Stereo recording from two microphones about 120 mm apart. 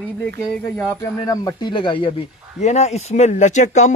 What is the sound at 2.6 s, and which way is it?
Speech, 70° left (ahead or behind).